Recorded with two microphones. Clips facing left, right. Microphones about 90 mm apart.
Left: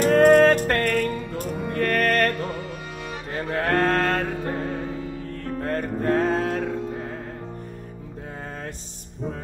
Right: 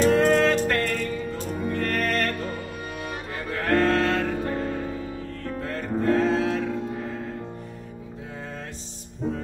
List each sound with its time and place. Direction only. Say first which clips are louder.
0.0 s music: left 4 dB; 50° left (ahead or behind)
5.6 s music: left 1 dB; 45° left (ahead or behind)